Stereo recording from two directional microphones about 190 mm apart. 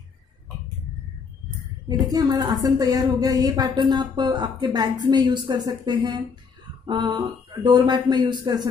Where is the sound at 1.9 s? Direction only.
20° right (ahead or behind).